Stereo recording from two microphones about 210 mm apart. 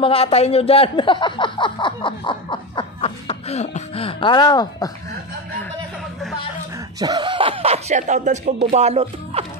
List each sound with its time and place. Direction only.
0.0 s a man's voice: 25° left (ahead or behind)
7.0 s speech: 20° right (ahead or behind)